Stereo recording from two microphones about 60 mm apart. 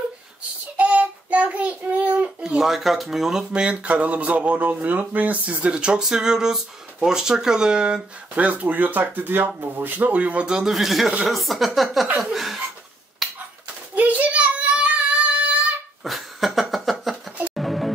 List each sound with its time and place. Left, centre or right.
0.7 s child singing: right
2.4 s speech: centre
10.7 s speech: centre
13.2 s a sound: centre
13.9 s child singing: right
16.0 s a sound: centre
17.6 s music: centre